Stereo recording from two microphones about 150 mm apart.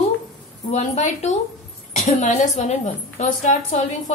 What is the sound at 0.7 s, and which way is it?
A woman's voice, 50° left (ahead or behind).